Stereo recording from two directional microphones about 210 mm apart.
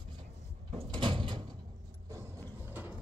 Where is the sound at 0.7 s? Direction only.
25° right (ahead or behind).